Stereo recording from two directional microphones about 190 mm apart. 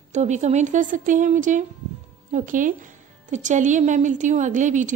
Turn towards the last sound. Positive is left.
turn(degrees=-40)  # may be behind; listen again after turning